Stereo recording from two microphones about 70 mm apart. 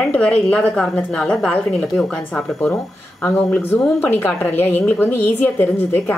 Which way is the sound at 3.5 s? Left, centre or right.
Left.